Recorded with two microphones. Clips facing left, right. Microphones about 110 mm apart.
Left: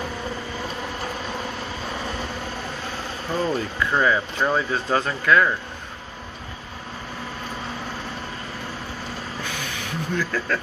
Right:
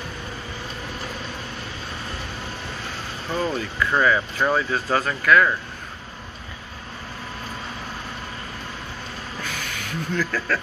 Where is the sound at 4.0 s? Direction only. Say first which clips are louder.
Right 1 dB; 25° left (ahead or behind).